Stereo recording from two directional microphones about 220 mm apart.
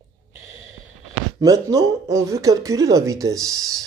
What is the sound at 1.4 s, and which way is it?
Speech, 15° right (ahead or behind).